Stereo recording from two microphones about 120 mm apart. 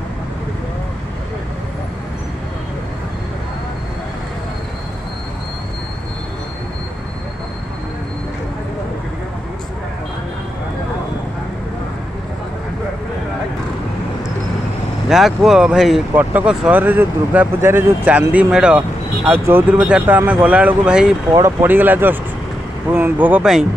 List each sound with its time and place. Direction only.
15.0 s speech: 5° right (ahead or behind)
21.3 s speech: 25° right (ahead or behind); by 23.7 s 5° right (ahead or behind)